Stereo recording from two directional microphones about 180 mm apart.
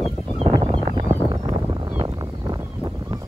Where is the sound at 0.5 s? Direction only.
25° right (ahead or behind).